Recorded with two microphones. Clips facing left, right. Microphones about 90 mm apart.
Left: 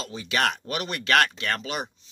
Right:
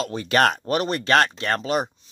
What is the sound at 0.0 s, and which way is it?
Speech, 55° right (ahead or behind).